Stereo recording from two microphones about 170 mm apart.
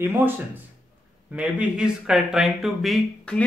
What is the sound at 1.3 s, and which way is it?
Speech, 5° right (ahead or behind).